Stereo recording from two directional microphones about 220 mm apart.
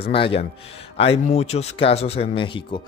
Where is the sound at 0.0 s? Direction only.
25° left (ahead or behind).